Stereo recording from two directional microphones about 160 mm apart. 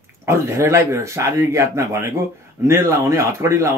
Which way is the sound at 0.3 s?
20° right (ahead or behind).